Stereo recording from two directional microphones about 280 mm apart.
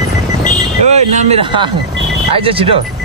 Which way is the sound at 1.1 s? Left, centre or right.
Right.